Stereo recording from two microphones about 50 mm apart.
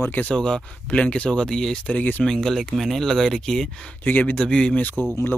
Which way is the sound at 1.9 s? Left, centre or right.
Left.